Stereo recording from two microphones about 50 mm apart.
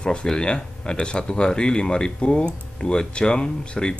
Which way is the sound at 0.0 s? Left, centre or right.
Centre.